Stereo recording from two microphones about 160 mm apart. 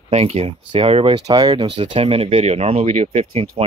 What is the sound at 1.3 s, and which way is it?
Speech, 25° right (ahead or behind).